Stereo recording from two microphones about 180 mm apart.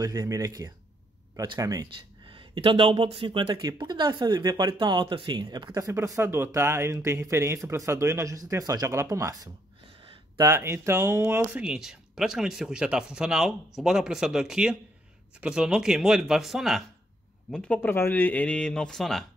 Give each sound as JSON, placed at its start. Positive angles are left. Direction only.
{"t": 0.0, "sound": "speech", "side_deg": -20}
{"t": 9.8, "sound": "a sound", "side_deg": -30}
{"t": 10.4, "sound": "speech", "side_deg": -15}